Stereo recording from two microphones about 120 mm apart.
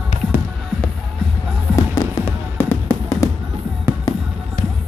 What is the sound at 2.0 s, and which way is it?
Music, 30° left (ahead or behind).